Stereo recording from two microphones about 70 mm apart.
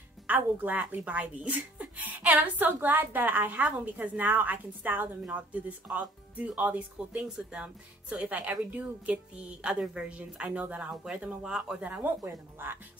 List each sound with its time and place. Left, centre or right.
0.3 s speech: right